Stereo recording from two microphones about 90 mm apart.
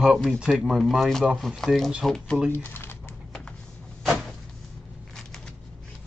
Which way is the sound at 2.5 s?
25° left (ahead or behind).